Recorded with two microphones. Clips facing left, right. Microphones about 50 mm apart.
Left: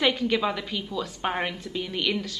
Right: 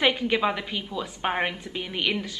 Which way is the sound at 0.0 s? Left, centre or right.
Centre.